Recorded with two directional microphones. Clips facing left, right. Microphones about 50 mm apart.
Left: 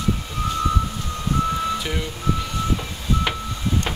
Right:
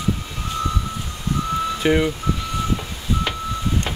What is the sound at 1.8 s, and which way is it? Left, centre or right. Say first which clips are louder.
Speech: right 10 dB; right.